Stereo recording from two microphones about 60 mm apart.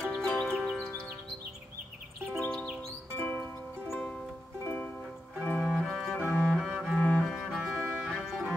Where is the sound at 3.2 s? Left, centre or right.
Centre.